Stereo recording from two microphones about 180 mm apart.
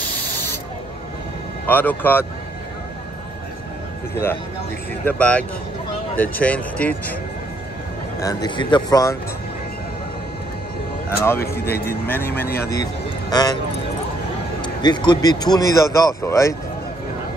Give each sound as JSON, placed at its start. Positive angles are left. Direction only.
{"t": 1.7, "sound": "speech", "side_deg": 10}
{"t": 5.0, "sound": "speech", "side_deg": 10}
{"t": 8.2, "sound": "speech", "side_deg": 20}
{"t": 11.1, "sound": "speech", "side_deg": 15}
{"t": 11.4, "sound": "speech", "side_deg": 60}
{"t": 12.1, "sound": "speech", "side_deg": 10}
{"t": 13.3, "sound": "speech", "side_deg": 20}
{"t": 14.6, "sound": "speech", "side_deg": 25}